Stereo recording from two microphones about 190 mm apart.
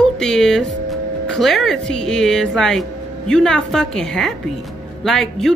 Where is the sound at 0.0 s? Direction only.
5° left (ahead or behind).